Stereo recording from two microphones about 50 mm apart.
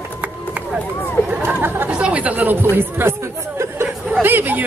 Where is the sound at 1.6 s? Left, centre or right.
Right.